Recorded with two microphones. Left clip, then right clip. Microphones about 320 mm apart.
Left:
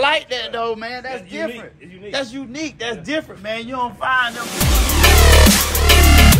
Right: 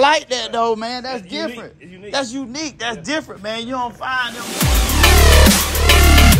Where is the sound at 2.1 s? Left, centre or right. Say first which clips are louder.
Right 2 dB; centre.